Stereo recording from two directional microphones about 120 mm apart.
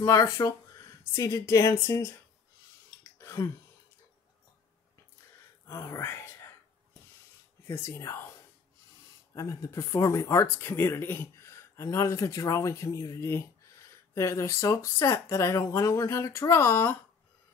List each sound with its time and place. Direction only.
0.0 s speech: 25° left (ahead or behind)
3.0 s a sound: 25° left (ahead or behind)
5.7 s speech: 25° left (ahead or behind)
7.6 s speech: 20° left (ahead or behind)
9.3 s speech: 25° left (ahead or behind)